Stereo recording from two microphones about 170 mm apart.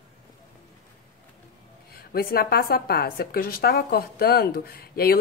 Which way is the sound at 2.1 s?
60° left (ahead or behind).